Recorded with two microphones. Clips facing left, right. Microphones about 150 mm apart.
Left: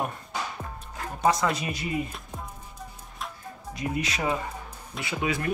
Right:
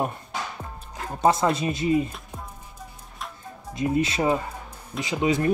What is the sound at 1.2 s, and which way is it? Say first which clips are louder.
Speech: right 4 dB; 30° right (ahead or behind).